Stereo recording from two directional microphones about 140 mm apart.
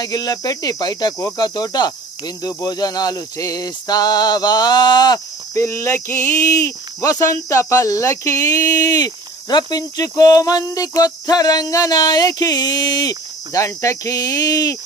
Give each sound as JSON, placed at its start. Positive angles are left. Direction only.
{"t": 0.0, "sound": "speech", "side_deg": 30}